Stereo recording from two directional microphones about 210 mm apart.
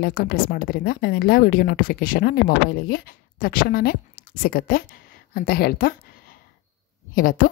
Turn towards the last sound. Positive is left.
turn(degrees=40)  # may be behind; listen again after turning